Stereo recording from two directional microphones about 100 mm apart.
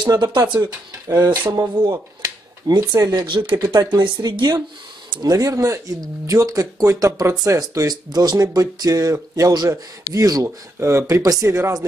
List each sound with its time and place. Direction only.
0.1 s speech: 40° right (ahead or behind)
1.1 s speech: 20° right (ahead or behind)
1.9 s a sound: 45° right (ahead or behind)
2.9 s speech: 40° right (ahead or behind)
10.8 s speech: 25° right (ahead or behind)